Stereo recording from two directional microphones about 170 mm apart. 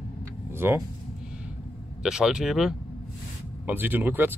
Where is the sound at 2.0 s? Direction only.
5° right (ahead or behind).